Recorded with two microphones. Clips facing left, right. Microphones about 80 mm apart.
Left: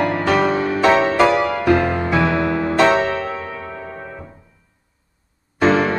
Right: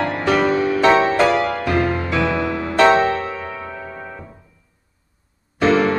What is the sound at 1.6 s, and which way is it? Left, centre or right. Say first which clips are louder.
Music: left 3 dB; left.